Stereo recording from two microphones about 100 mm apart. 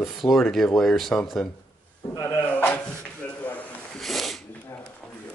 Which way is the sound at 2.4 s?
15° left (ahead or behind).